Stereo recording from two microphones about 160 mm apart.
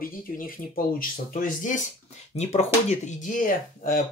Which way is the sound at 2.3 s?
40° left (ahead or behind).